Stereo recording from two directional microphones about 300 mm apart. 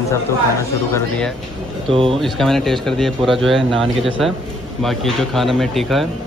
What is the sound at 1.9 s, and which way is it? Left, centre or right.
Speech, centre.